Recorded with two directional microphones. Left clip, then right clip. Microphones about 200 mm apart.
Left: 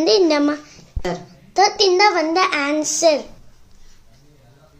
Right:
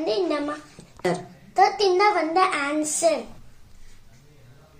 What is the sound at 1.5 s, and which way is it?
A child's voice, 45° left (ahead or behind).